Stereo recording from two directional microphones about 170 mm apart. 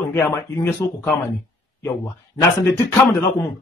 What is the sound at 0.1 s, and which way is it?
Speech, 10° left (ahead or behind).